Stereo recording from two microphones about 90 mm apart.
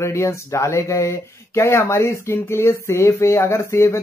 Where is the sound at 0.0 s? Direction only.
35° left (ahead or behind).